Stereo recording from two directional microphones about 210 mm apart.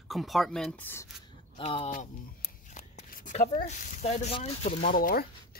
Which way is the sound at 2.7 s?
40° left (ahead or behind).